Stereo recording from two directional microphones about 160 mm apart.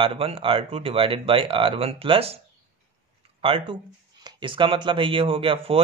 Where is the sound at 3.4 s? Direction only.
30° right (ahead or behind).